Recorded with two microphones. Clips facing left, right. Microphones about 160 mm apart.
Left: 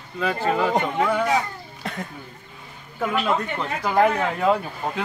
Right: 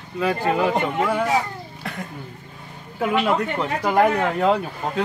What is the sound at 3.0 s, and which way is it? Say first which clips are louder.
Speech: right 3 dB; 10° right (ahead or behind).